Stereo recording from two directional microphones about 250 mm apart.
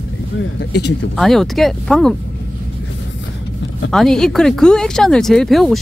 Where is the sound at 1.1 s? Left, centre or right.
Centre.